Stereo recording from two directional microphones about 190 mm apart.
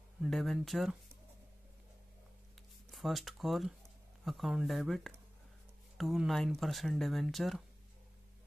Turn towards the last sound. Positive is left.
turn(degrees=0)  # may be behind; listen again after turning